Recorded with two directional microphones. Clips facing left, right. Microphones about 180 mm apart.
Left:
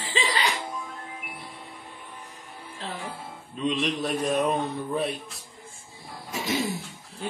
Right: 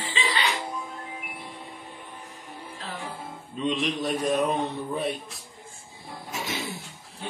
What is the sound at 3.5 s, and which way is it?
A man's voice, centre (ahead or behind).